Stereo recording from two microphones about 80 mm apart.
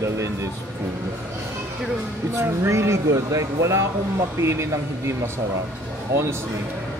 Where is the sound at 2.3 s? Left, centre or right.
Right.